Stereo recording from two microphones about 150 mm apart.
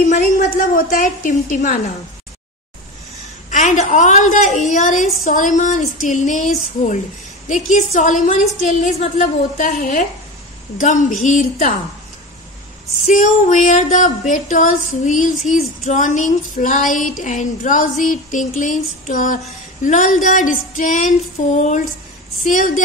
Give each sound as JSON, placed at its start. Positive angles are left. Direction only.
{"t": 0.0, "sound": "female singing", "side_deg": 55}
{"t": 3.4, "sound": "female singing", "side_deg": 55}
{"t": 13.0, "sound": "female singing", "side_deg": 50}